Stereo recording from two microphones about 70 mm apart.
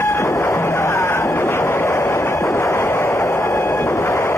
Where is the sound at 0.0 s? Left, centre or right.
Left.